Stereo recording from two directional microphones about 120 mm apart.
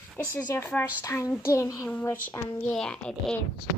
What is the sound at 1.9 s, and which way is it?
A child's voice, 15° left (ahead or behind).